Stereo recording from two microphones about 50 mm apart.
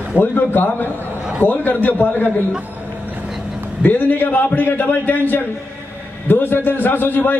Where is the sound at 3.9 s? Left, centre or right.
Left.